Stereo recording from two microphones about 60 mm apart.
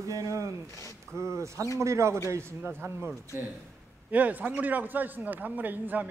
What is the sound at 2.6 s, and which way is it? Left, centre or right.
Speech, right.